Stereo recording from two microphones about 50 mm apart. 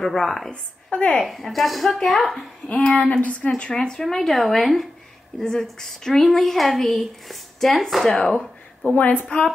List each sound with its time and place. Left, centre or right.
0.0 s speech: centre
0.5 s a woman's voice: centre
1.2 s speech: centre
2.9 s a woman's voice: left; by 8.4 s centre
8.9 s a woman's voice: left